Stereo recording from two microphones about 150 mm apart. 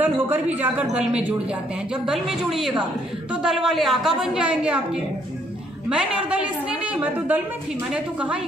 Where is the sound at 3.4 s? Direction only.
5° right (ahead or behind).